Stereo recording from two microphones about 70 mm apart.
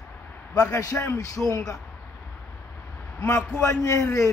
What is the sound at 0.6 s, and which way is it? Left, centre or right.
A man's voice, left.